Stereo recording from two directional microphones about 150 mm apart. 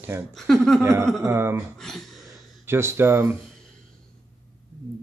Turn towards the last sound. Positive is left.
turn(degrees=-15)  # may be behind; listen again after turning